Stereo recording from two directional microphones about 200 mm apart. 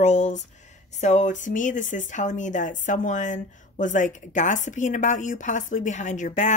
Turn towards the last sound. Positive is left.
turn(degrees=40)  # may be behind; listen again after turning